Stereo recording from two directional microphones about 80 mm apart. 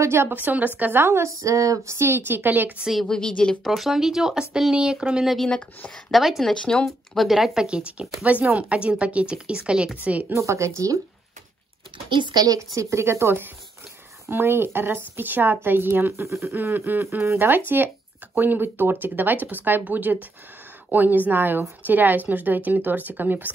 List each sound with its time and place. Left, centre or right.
0.0 s a woman's voice: right
2.8 s speech: centre
3.1 s a woman's voice: centre
3.7 s speech: centre
7.2 s speech: centre
10.3 s speech: right
12.1 s speech: right
12.5 s a woman's voice: right
16.5 s a woman's voice: right